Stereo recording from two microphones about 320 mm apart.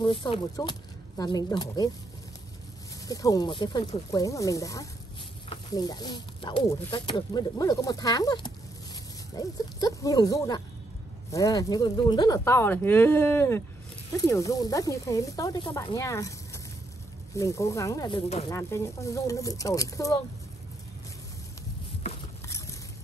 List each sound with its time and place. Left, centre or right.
0.0 s speech: centre
3.1 s speech: centre